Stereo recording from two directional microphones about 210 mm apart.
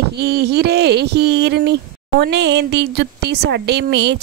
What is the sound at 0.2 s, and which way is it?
Speech, 50° right (ahead or behind).